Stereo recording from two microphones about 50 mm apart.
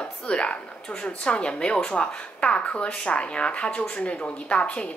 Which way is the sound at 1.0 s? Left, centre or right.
Left.